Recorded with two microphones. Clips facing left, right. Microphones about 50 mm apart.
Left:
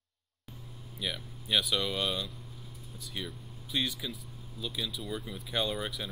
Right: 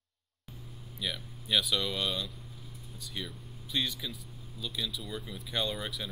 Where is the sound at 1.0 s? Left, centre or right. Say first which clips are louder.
Even; centre.